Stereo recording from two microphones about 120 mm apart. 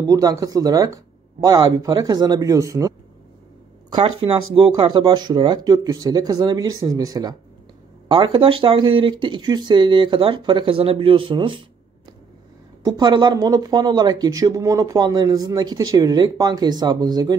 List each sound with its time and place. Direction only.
0.0 s speech: 30° right (ahead or behind)
3.9 s speech: 55° right (ahead or behind)
4.8 s speech: 40° right (ahead or behind)
8.1 s speech: 45° right (ahead or behind)
12.8 s speech: 35° right (ahead or behind)